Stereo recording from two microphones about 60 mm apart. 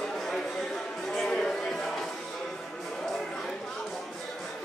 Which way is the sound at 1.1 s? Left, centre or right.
Centre.